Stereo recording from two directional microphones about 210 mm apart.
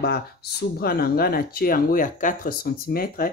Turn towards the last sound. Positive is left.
turn(degrees=45)  # may be behind; listen again after turning